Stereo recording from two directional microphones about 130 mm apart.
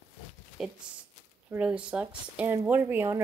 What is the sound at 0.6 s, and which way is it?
Speech, 5° right (ahead or behind).